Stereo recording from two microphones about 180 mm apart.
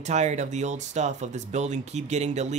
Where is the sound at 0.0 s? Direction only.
40° right (ahead or behind).